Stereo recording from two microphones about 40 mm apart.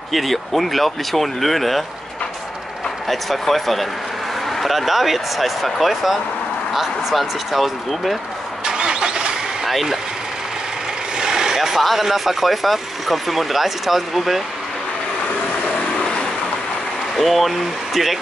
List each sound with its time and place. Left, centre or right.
0.1 s speech: centre
3.1 s speech: centre
8.6 s vehicle: centre
9.7 s speech: centre
11.1 s speech: centre
15.7 s vehicle: centre
17.2 s speech: centre